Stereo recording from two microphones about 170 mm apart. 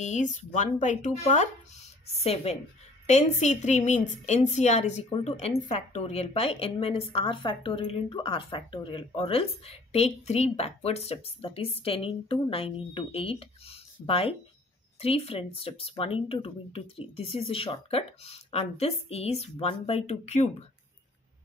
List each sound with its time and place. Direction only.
0.0 s a woman's voice: 45° left (ahead or behind)